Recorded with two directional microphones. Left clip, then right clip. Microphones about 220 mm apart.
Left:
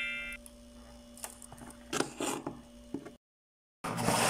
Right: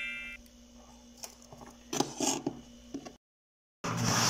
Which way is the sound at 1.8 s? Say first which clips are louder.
Right 1 dB; centre (ahead or behind).